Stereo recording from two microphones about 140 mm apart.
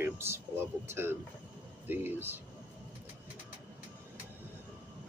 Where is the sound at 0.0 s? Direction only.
15° right (ahead or behind).